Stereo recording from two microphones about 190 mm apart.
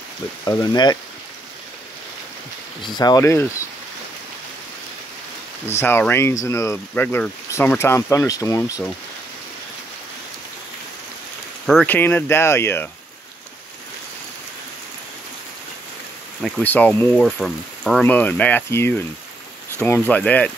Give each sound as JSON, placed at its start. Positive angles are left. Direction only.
{"t": 0.5, "sound": "speech", "side_deg": 20}
{"t": 2.8, "sound": "speech", "side_deg": 20}
{"t": 5.8, "sound": "speech", "side_deg": 10}
{"t": 11.6, "sound": "speech", "side_deg": 5}
{"t": 16.4, "sound": "speech", "side_deg": 5}